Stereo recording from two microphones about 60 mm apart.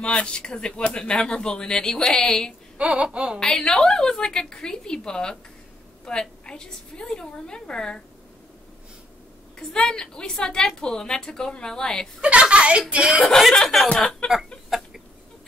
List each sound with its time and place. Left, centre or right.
0.0 s speech: centre
2.8 s a woman's voice: centre
3.3 s speech: centre
9.6 s speech: centre
12.2 s a woman's voice: centre
13.4 s speech: centre